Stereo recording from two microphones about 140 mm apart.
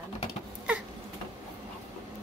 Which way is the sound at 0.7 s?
10° right (ahead or behind).